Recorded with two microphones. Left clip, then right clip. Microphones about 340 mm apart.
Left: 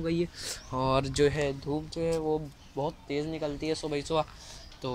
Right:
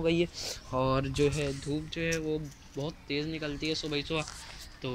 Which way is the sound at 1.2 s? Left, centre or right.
Left.